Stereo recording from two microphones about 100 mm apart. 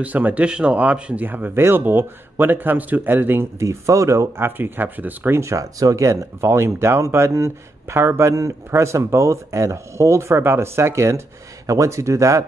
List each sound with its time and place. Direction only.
0.0 s speech: 15° right (ahead or behind); by 12.4 s 30° right (ahead or behind)